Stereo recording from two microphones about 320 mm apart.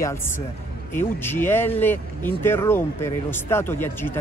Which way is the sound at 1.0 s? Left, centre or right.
Centre.